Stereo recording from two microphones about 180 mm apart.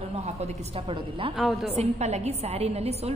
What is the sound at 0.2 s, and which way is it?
A woman's voice, 35° right (ahead or behind).